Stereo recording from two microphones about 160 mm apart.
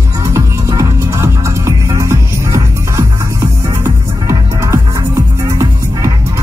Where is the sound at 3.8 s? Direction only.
20° right (ahead or behind).